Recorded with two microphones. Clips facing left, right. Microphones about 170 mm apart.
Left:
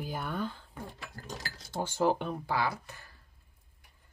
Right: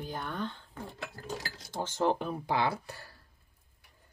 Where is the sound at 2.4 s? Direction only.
25° right (ahead or behind).